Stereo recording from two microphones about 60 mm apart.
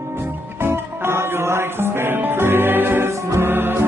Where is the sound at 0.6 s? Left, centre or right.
Right.